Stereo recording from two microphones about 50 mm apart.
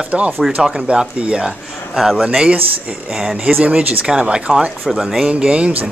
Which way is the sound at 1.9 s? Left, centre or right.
Centre.